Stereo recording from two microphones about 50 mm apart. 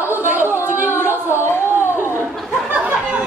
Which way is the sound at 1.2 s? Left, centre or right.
Left.